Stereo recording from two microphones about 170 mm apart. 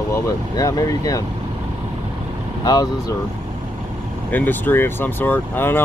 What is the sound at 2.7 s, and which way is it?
Speech, 20° left (ahead or behind).